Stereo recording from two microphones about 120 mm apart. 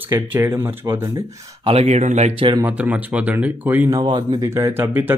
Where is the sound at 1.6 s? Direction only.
55° right (ahead or behind).